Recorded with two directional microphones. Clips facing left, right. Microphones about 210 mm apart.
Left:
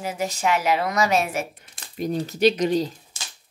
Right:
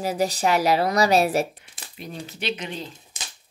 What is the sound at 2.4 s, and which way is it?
Speech, 40° left (ahead or behind).